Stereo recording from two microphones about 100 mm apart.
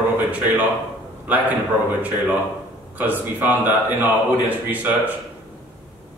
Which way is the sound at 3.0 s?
15° right (ahead or behind).